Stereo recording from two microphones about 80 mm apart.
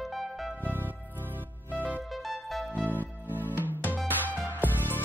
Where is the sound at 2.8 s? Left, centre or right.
Right.